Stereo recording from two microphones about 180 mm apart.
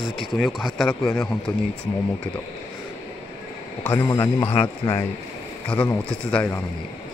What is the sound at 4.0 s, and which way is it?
Speech, 20° left (ahead or behind).